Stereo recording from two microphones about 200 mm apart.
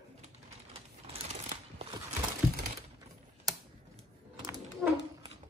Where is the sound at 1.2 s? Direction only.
35° right (ahead or behind).